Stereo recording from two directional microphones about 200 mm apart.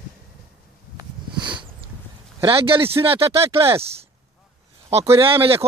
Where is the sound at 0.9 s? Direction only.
25° right (ahead or behind).